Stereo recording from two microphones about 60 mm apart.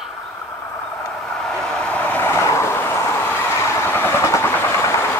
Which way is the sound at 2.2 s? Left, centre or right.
Left.